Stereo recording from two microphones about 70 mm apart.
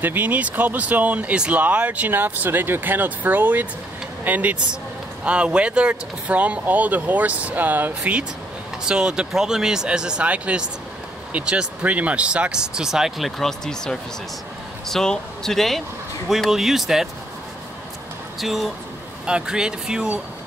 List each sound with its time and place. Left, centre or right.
0.0 s speech: right; by 13.3 s centre
13.4 s speech: centre
18.4 s speech: centre